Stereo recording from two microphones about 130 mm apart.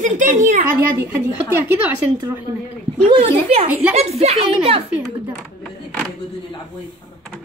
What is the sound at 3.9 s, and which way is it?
Speech, 55° right (ahead or behind).